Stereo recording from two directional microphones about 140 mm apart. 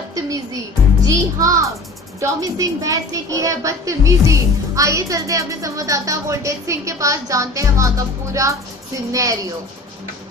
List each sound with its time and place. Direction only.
0.1 s a woman's voice: 25° right (ahead or behind)